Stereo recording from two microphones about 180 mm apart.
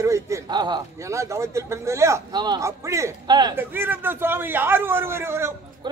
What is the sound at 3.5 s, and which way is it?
A man's voice, 10° right (ahead or behind).